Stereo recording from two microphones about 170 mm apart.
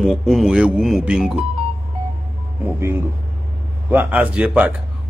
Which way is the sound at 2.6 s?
15° right (ahead or behind).